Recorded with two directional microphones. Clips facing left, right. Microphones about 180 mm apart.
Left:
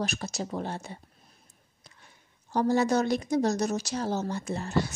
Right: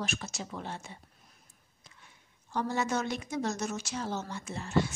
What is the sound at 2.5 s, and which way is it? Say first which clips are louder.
A woman's voice: left 7 dB; 40° left (ahead or behind).